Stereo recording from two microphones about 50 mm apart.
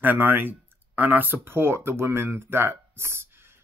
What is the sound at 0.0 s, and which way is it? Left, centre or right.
Speech, right.